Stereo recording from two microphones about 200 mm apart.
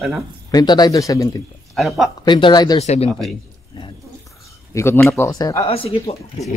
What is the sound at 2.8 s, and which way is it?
Speech, 35° left (ahead or behind).